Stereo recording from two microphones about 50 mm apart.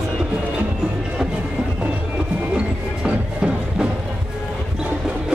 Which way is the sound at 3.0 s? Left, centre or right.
Centre.